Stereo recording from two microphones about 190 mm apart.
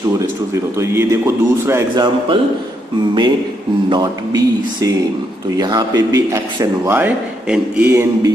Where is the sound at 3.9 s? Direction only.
20° right (ahead or behind).